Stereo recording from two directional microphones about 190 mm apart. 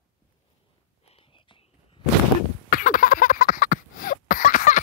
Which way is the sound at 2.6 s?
45° left (ahead or behind).